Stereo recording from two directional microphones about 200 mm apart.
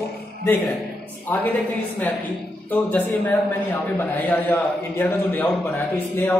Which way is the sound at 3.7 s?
10° left (ahead or behind).